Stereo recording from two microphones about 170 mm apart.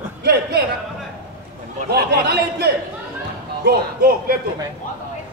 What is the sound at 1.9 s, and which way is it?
A man's voice, 70° right (ahead or behind).